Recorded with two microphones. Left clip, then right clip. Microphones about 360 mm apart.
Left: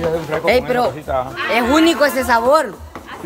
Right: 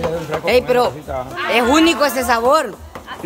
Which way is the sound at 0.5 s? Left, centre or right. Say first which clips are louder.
Right 1 dB; centre.